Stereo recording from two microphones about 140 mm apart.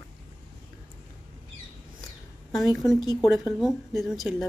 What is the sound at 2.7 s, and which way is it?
A woman's voice, centre (ahead or behind).